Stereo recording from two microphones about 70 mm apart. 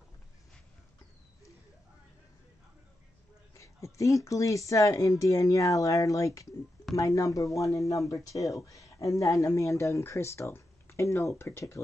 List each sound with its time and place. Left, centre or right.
3.5 s speech: left